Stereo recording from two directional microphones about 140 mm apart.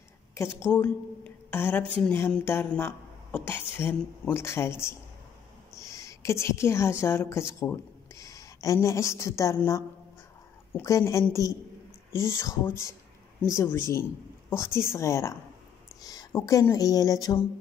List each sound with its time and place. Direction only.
0.3 s a woman's voice: 20° left (ahead or behind)
10.7 s speech: 20° left (ahead or behind)